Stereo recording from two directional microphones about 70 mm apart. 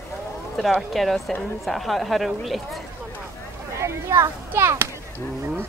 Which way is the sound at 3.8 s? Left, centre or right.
Right.